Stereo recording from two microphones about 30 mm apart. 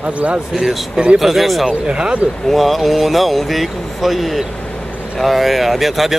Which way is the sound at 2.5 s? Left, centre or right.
Centre.